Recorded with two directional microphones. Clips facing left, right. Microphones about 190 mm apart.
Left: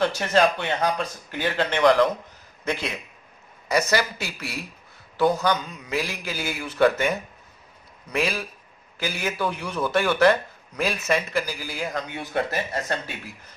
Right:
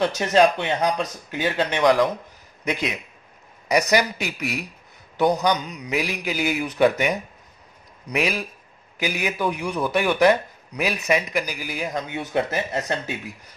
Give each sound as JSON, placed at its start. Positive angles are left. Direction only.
{"t": 0.0, "sound": "a man's voice", "side_deg": -20}